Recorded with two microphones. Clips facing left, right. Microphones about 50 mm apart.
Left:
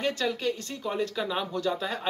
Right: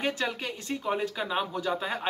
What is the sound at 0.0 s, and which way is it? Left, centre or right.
Speech, right.